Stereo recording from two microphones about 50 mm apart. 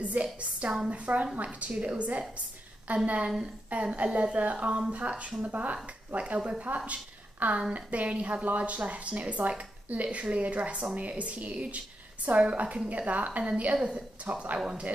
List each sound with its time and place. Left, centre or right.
0.0 s a woman's voice: right
6.9 s a sound: right
7.7 s a woman's voice: right